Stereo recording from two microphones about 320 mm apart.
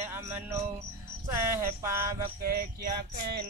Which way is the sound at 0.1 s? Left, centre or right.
Centre.